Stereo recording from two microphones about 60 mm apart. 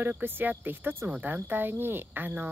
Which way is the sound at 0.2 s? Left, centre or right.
Right.